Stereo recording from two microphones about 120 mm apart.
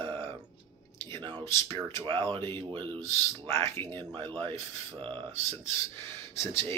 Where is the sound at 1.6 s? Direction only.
45° right (ahead or behind).